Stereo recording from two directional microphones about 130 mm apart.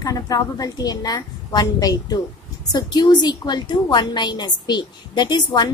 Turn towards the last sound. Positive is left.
turn(degrees=35)  # may be behind; listen again after turning